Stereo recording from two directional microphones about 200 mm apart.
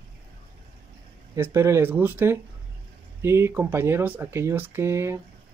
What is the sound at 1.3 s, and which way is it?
Speech, 15° right (ahead or behind).